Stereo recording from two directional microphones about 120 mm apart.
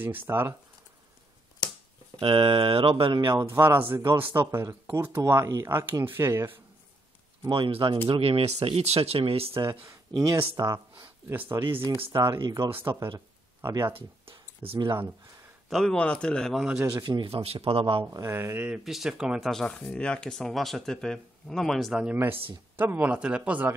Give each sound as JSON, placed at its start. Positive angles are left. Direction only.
{"t": 0.0, "sound": "a man's voice", "side_deg": -15}
{"t": 2.1, "sound": "speech", "side_deg": -50}
{"t": 3.3, "sound": "speech", "side_deg": -20}
{"t": 7.4, "sound": "speech", "side_deg": -45}
{"t": 9.7, "sound": "speech", "side_deg": -25}
{"t": 12.1, "sound": "speech", "side_deg": -35}
{"t": 12.7, "sound": "speech", "side_deg": -20}
{"t": 13.9, "sound": "a sound", "side_deg": -50}
{"t": 15.7, "sound": "speech", "side_deg": 5}
{"t": 16.9, "sound": "speech", "side_deg": -35}
{"t": 17.3, "sound": "speech", "side_deg": -55}
{"t": 18.1, "sound": "speech", "side_deg": -25}
{"t": 18.7, "sound": "speech", "side_deg": -5}
{"t": 22.8, "sound": "a man's voice", "side_deg": -15}